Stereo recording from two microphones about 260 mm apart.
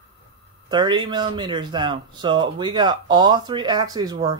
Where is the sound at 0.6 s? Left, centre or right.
Centre.